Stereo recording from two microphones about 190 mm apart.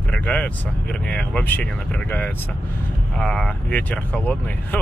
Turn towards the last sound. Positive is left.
turn(degrees=10)  # may be behind; listen again after turning